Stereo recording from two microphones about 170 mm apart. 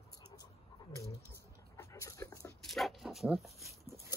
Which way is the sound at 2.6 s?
Centre (ahead or behind).